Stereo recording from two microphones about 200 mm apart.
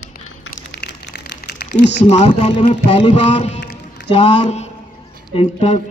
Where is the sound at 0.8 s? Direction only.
55° left (ahead or behind).